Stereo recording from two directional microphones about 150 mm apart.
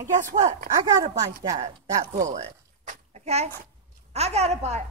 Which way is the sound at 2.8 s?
45° right (ahead or behind).